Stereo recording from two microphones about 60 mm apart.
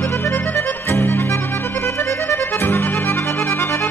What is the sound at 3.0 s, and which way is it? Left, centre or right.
Music, left.